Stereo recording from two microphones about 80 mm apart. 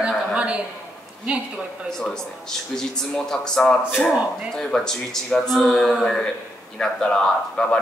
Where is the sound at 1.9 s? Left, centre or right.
Centre.